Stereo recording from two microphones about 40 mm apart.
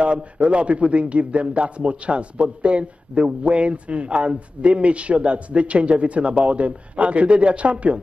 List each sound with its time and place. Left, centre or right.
0.0 s a man's voice: right